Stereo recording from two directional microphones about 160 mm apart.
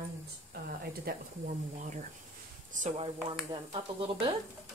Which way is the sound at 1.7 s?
50° right (ahead or behind).